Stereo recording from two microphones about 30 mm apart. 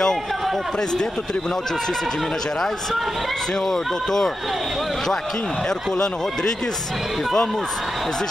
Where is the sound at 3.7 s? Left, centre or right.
Centre.